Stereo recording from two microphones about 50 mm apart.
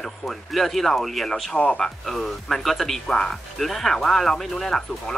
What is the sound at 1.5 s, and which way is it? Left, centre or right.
Speech, centre.